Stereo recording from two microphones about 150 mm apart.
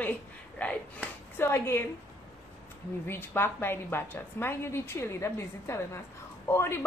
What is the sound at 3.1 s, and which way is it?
A woman's voice, 15° left (ahead or behind).